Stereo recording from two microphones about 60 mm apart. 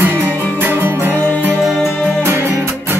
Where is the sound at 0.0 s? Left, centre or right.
Right.